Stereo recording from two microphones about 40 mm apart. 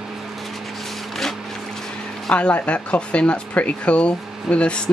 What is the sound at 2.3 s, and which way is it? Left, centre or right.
Speech, left.